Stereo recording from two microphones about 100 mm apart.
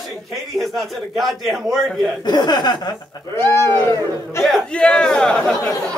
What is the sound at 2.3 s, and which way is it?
Speech, 45° left (ahead or behind).